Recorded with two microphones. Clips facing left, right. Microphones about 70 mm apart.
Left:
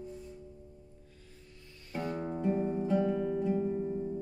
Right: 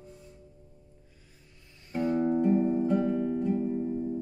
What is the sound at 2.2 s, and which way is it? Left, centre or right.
Music, centre.